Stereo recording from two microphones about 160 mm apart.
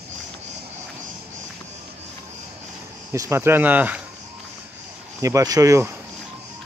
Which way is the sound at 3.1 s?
20° right (ahead or behind).